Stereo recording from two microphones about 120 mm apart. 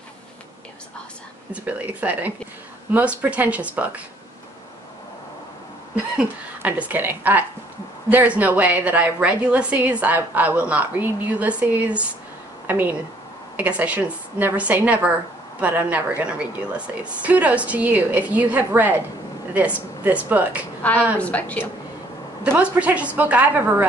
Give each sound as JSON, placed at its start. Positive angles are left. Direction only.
{"t": 1.5, "sound": "a woman's voice", "side_deg": -10}
{"t": 6.1, "sound": "a woman's voice", "side_deg": -15}
{"t": 20.0, "sound": "a woman's voice", "side_deg": -15}
{"t": 20.8, "sound": "a woman's voice", "side_deg": 10}
{"t": 22.4, "sound": "a woman's voice", "side_deg": -10}